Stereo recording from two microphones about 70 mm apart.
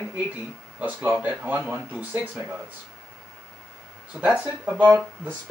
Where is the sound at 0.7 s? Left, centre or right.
Centre.